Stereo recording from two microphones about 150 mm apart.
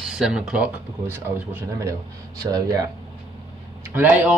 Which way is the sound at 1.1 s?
15° right (ahead or behind).